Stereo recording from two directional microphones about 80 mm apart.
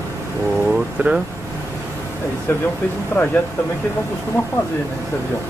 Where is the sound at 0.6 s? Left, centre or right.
Centre.